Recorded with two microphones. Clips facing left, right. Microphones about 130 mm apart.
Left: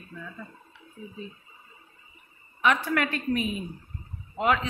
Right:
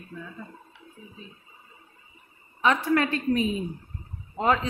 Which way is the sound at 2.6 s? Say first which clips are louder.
Right 2 dB; 25° right (ahead or behind).